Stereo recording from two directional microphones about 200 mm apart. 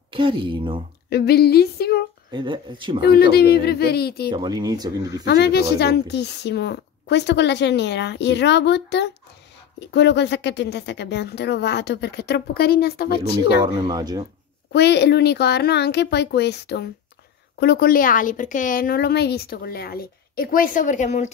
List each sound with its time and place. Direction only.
0.1 s speech: 25° right (ahead or behind)
1.1 s a woman's voice: 55° left (ahead or behind)
2.3 s speech: 25° right (ahead or behind)
3.0 s a woman's voice: 55° left (ahead or behind)
4.3 s speech: 20° right (ahead or behind)
5.2 s speech: 55° left (ahead or behind)
13.6 s speech: 20° right (ahead or behind)
14.7 s a woman's voice: 55° left (ahead or behind); by 21.3 s 35° left (ahead or behind)